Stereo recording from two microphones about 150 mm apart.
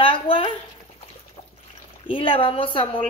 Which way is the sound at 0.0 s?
35° left (ahead or behind).